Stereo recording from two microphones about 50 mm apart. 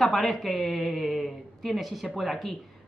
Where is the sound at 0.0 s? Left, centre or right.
Centre.